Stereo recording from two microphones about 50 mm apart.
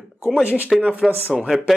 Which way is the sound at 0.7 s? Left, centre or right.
Centre.